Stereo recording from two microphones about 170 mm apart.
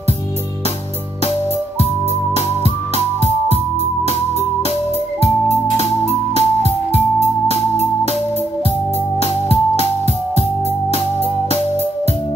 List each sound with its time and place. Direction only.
5.2 s keyboard: 40° left (ahead or behind)
9.2 s music: 35° left (ahead or behind)
10.9 s music: 40° left (ahead or behind)